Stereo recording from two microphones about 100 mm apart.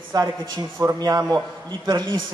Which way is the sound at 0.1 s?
45° right (ahead or behind).